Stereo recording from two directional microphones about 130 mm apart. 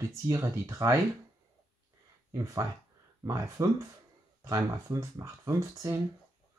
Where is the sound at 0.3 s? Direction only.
20° right (ahead or behind).